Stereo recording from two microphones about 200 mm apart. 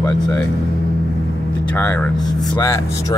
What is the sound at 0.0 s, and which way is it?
Speech, 10° left (ahead or behind).